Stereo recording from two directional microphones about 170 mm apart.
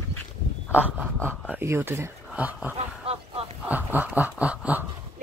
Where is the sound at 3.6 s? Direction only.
10° right (ahead or behind).